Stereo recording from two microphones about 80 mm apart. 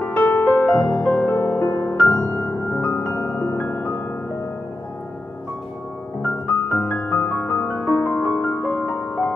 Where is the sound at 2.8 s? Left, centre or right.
Left.